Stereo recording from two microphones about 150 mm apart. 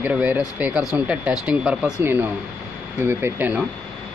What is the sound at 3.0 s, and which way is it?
Speech, 15° right (ahead or behind).